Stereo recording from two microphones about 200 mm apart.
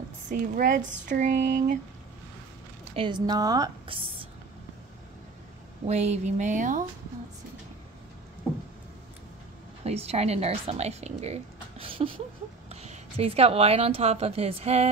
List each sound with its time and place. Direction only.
0.3 s speech: 40° right (ahead or behind)
3.0 s a woman's voice: 20° right (ahead or behind)
5.9 s speech: 35° right (ahead or behind)
9.8 s a woman's voice: 30° right (ahead or behind)